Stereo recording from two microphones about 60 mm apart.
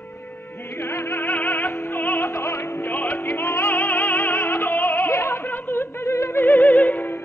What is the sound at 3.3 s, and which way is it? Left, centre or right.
Music, left.